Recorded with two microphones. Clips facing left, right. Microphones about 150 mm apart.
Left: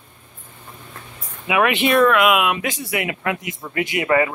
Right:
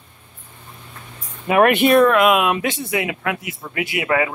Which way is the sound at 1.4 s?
45° right (ahead or behind).